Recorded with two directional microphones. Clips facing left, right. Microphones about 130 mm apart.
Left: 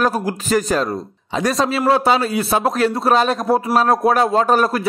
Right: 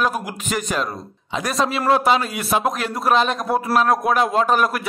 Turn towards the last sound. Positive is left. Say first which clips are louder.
# left 3 dB
turn(degrees=35)  # may be behind; listen again after turning